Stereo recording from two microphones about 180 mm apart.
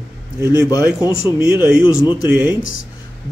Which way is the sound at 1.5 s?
25° left (ahead or behind).